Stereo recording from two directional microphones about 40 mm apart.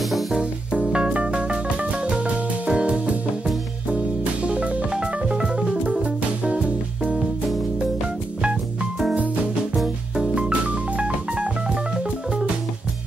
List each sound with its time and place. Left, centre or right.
0.3 s music: right
6.4 s music: right
10.1 s music: centre